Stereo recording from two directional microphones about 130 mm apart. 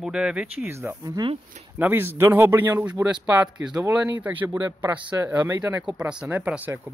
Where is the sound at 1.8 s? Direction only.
15° right (ahead or behind).